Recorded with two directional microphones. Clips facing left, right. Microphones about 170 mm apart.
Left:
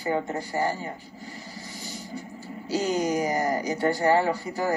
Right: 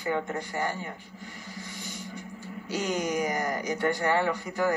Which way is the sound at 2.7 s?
35° left (ahead or behind).